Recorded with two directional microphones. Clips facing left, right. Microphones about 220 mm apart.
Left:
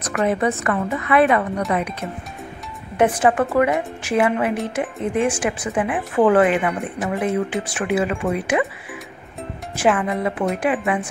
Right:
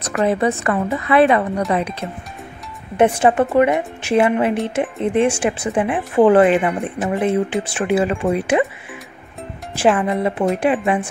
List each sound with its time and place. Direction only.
0.2 s speech: 30° right (ahead or behind)
9.8 s speech: 30° right (ahead or behind)